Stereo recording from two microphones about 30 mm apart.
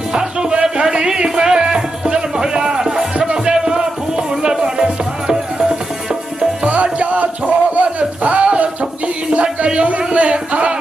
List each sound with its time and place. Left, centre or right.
0.1 s music: right
6.7 s music: right
9.8 s speech: right